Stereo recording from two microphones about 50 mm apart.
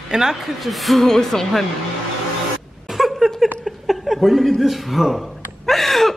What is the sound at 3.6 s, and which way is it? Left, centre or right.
Chuckle, centre.